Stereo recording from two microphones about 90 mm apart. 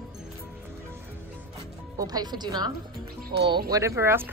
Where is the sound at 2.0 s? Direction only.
45° right (ahead or behind).